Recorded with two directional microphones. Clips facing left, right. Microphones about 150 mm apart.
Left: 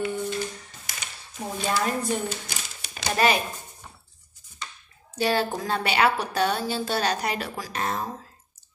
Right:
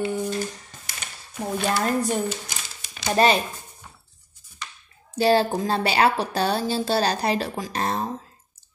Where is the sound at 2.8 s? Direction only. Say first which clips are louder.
Left 3 dB; 65° left (ahead or behind).